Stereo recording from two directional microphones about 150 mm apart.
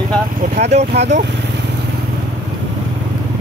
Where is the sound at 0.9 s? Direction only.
90° right.